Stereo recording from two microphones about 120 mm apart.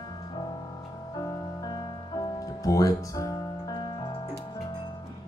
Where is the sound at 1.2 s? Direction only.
30° left (ahead or behind).